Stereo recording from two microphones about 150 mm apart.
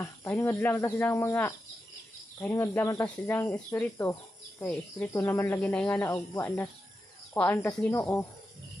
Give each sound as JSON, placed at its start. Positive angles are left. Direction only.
{"t": 0.3, "sound": "speech", "side_deg": 10}